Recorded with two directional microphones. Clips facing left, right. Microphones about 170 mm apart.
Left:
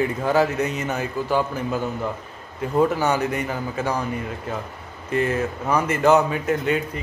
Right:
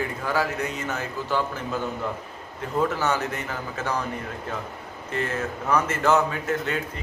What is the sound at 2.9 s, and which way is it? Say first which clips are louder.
Speech: left 4 dB; 15° left (ahead or behind).